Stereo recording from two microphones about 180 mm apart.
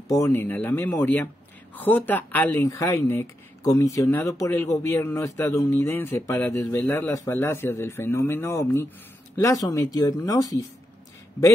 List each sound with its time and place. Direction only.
0.1 s speech: 15° left (ahead or behind)